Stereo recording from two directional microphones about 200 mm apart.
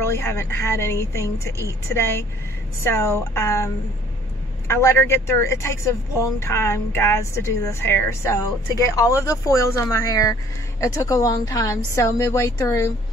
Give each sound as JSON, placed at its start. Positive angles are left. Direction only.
{"t": 0.0, "sound": "speech", "side_deg": 10}